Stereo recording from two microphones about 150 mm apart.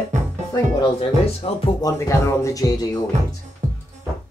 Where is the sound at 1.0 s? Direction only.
40° left (ahead or behind).